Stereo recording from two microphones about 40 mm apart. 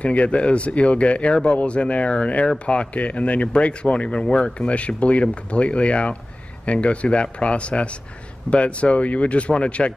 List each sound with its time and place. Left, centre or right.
0.0 s speech: left